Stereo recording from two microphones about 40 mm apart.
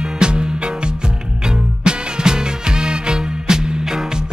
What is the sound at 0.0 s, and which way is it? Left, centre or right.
Music, right.